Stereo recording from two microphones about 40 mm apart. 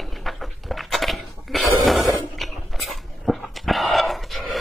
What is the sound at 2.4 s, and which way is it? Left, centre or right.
Dog, centre.